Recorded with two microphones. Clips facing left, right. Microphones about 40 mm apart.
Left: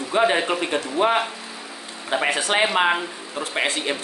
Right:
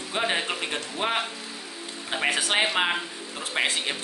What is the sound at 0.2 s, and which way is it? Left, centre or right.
Speech, centre.